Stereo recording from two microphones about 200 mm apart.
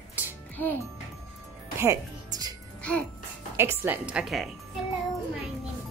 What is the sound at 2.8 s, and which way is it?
Music, 5° left (ahead or behind).